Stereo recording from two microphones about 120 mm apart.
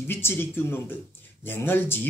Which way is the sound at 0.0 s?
20° left (ahead or behind).